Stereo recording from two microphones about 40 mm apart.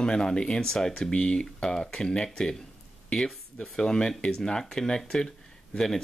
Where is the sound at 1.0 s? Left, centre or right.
Left.